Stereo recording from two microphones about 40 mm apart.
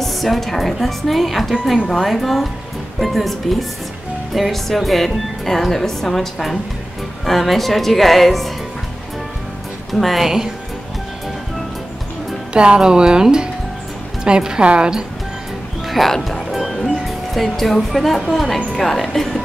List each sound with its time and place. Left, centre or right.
0.0 s a woman's voice: centre
9.9 s a woman's voice: centre
10.2 s a woman's voice: centre
12.5 s speech: right
15.9 s music: centre
17.9 s a woman's voice: centre